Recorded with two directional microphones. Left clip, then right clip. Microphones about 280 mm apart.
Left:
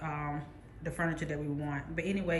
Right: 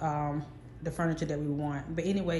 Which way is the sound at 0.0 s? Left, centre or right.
Centre.